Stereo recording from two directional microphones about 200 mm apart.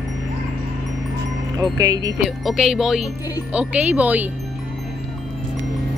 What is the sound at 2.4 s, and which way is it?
Speech, centre (ahead or behind).